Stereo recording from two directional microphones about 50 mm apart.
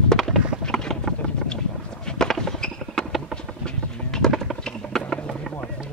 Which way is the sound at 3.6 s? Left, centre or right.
Centre.